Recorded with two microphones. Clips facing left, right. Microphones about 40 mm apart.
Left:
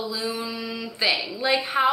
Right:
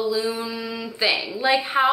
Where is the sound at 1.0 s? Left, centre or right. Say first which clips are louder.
Right 2 dB; centre.